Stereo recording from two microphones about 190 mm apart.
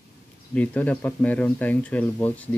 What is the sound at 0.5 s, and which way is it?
Speech, 5° left (ahead or behind).